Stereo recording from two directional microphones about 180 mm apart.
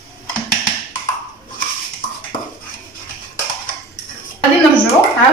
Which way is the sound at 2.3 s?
25° left (ahead or behind).